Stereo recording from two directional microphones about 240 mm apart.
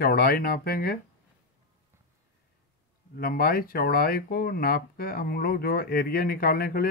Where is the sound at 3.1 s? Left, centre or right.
Left.